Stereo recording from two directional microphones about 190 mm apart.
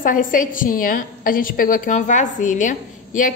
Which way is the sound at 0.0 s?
45° left (ahead or behind).